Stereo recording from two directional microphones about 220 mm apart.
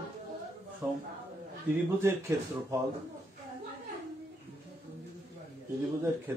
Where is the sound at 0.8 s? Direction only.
10° right (ahead or behind).